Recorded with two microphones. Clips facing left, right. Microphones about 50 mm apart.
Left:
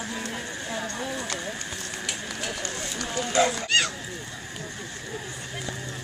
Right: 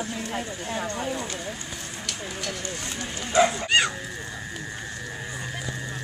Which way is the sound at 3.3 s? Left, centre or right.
Right.